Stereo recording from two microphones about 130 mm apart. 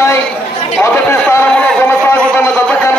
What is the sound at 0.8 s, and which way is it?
Chatter, 20° left (ahead or behind).